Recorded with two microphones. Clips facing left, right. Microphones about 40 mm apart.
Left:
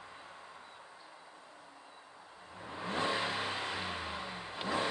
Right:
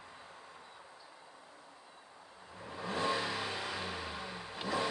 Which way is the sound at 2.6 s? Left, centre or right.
Left.